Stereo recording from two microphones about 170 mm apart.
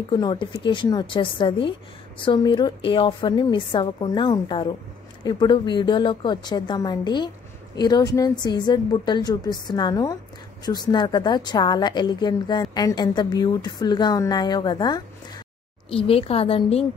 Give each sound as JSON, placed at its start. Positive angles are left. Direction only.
{"t": 0.1, "sound": "a woman's voice", "side_deg": 25}